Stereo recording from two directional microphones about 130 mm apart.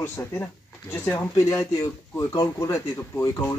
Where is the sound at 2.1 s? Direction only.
25° left (ahead or behind).